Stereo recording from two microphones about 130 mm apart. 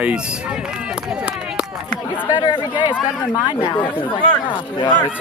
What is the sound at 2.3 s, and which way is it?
Speech, 35° left (ahead or behind).